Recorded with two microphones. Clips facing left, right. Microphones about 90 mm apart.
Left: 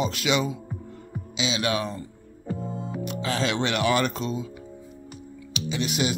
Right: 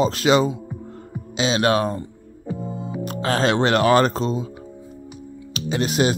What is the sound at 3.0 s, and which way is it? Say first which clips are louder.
Speech: right 7 dB; 45° right (ahead or behind).